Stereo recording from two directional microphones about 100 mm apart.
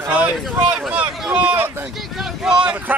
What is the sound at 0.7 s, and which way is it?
Speech, 10° right (ahead or behind).